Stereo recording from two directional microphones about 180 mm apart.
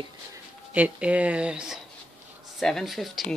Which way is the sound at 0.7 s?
5° right (ahead or behind).